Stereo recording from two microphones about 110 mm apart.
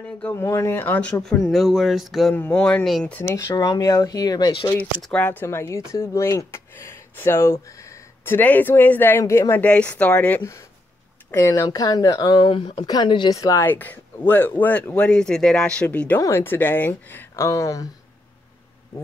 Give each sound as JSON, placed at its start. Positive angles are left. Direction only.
{"t": 0.3, "sound": "speech", "side_deg": 25}
{"t": 1.5, "sound": "speech", "side_deg": 0}
{"t": 2.3, "sound": "speech", "side_deg": 15}
{"t": 3.3, "sound": "speech", "side_deg": 30}
{"t": 5.2, "sound": "speech", "side_deg": 15}
{"t": 9.6, "sound": "speech", "side_deg": 10}
{"t": 11.3, "sound": "speech", "side_deg": 25}
{"t": 13.4, "sound": "speech", "side_deg": 30}
{"t": 13.7, "sound": "speech", "side_deg": 15}
{"t": 16.2, "sound": "speech", "side_deg": 25}
{"t": 17.4, "sound": "speech", "side_deg": 30}